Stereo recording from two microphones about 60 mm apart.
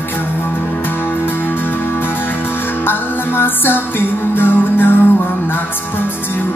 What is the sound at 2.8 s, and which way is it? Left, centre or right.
Music, left.